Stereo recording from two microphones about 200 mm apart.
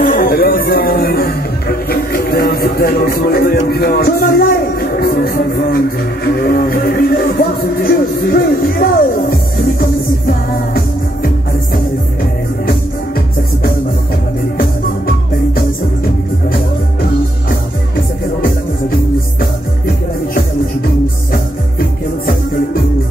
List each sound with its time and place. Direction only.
0.0 s music: 45° left (ahead or behind)
21.3 s music: 45° left (ahead or behind)